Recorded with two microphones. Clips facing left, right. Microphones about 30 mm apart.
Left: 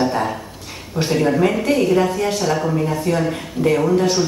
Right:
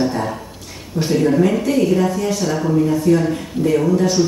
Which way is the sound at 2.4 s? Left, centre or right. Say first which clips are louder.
Right 2 dB; centre.